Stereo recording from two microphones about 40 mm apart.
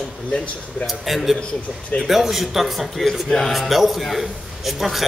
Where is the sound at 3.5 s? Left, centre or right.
Centre.